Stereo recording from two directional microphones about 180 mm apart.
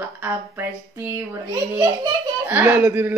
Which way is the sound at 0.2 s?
15° right (ahead or behind).